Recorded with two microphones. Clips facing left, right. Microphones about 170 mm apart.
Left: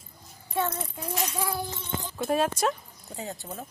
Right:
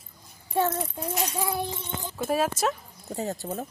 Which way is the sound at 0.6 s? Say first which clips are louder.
Right 4 dB; 45° right (ahead or behind).